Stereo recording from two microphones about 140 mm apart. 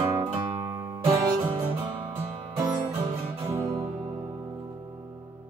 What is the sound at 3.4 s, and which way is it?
Music, 25° right (ahead or behind).